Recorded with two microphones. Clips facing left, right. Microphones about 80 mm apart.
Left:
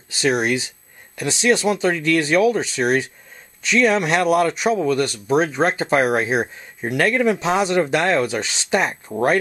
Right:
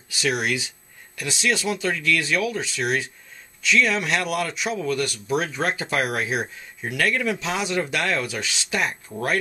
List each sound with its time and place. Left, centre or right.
0.1 s speech: left